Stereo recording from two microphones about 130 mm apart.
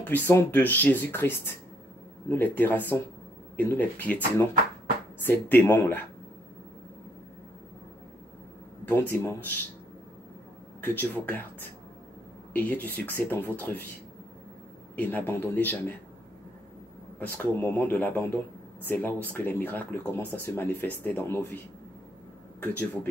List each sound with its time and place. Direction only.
0.1 s speech: 20° left (ahead or behind)
5.2 s speech: 15° left (ahead or behind)
8.8 s speech: 15° left (ahead or behind)
10.8 s speech: 15° left (ahead or behind)
12.5 s speech: 10° left (ahead or behind)
15.0 s speech: 15° left (ahead or behind)
17.2 s speech: 10° left (ahead or behind)
22.6 s speech: 15° left (ahead or behind)